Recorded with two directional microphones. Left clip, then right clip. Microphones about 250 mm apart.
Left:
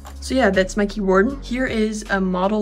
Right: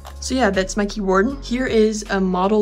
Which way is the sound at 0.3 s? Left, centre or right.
Centre.